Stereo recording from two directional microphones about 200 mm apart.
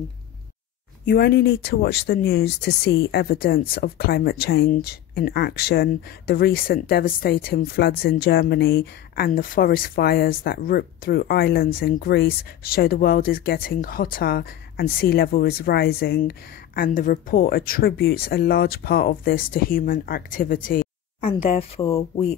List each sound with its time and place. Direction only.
1.0 s speech: 50° left (ahead or behind)
21.2 s speech: 30° left (ahead or behind)